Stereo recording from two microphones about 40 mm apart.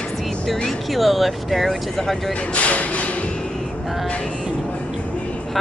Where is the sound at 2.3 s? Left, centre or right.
Left.